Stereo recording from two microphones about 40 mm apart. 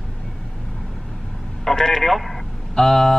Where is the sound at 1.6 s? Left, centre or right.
Centre.